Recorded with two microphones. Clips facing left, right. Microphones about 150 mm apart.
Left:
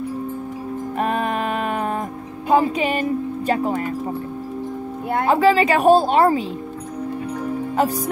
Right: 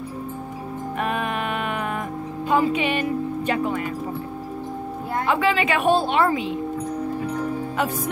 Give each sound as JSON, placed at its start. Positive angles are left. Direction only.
{"t": 0.9, "sound": "music", "side_deg": 35}
{"t": 2.5, "sound": "speech", "side_deg": 40}
{"t": 5.2, "sound": "a woman's voice", "side_deg": 40}